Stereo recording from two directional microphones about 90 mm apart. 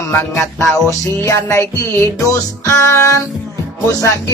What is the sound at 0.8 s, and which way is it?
Music, 35° left (ahead or behind).